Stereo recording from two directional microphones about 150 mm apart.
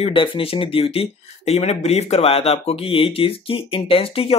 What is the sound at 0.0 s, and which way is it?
Speech, 35° left (ahead or behind).